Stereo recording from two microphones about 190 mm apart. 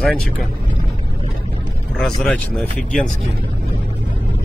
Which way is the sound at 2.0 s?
Centre (ahead or behind).